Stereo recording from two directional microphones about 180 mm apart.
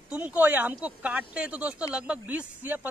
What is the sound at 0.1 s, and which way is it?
Speech, 10° right (ahead or behind).